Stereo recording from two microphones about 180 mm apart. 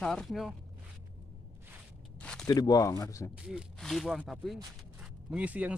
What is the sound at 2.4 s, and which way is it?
Speech, 20° left (ahead or behind).